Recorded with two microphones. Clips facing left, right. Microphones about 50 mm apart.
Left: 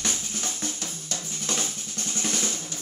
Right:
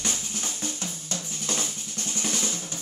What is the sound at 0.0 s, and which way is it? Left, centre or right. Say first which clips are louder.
Drum: left 1 dB; right.